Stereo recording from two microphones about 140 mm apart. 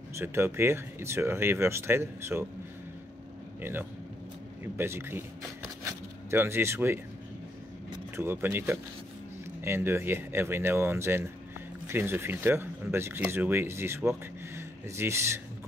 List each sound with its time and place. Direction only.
0.2 s speech: 20° right (ahead or behind)
4.7 s speech: 15° right (ahead or behind)
6.3 s speech: 15° right (ahead or behind)
8.2 s speech: 15° right (ahead or behind)